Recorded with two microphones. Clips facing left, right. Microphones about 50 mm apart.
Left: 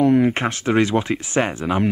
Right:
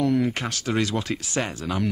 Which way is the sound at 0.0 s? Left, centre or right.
Left.